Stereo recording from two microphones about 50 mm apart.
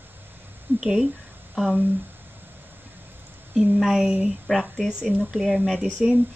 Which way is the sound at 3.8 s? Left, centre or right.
Centre.